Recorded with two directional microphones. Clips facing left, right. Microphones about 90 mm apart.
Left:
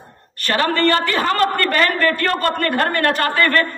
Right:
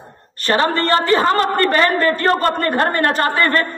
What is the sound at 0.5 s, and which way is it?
A man's voice, 30° right (ahead or behind).